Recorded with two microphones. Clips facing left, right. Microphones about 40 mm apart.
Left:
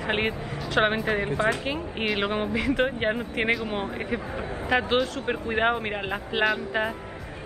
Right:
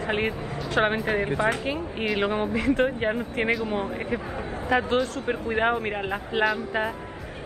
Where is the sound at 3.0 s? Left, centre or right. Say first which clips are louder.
Even; left.